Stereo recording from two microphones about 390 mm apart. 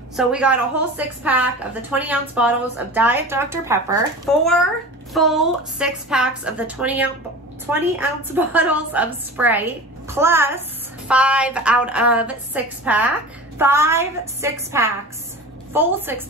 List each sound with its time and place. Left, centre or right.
0.1 s a woman's voice: centre